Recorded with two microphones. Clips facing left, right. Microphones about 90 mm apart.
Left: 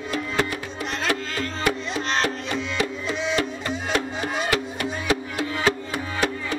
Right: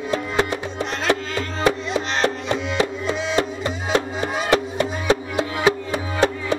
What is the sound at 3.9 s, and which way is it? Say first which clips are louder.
Music: right 4 dB; 30° right (ahead or behind).